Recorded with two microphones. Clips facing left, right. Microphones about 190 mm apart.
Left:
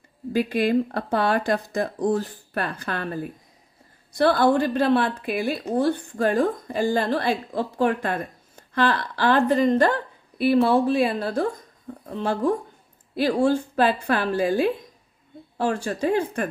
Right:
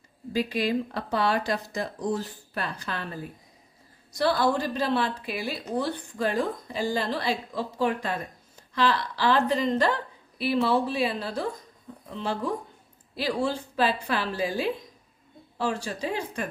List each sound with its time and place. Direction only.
0.3 s a woman's voice: 55° left (ahead or behind)